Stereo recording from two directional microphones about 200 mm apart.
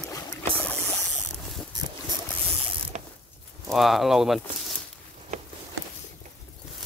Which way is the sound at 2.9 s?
35° right (ahead or behind).